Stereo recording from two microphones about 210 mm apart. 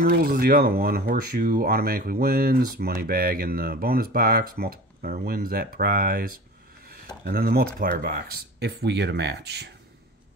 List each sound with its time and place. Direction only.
0.0 s speech: 45° right (ahead or behind)